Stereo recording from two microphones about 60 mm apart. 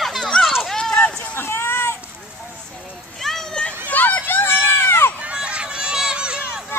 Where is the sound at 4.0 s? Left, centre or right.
Left.